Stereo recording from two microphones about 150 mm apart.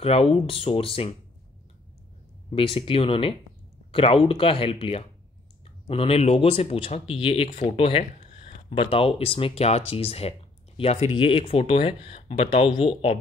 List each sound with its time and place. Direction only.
0.0 s speech: 40° left (ahead or behind)
2.5 s speech: 35° left (ahead or behind)